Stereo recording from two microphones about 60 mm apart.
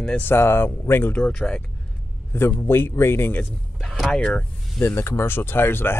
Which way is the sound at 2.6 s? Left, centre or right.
Left.